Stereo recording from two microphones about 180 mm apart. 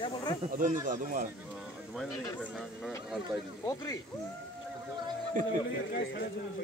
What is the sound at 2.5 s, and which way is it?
Speech, centre (ahead or behind).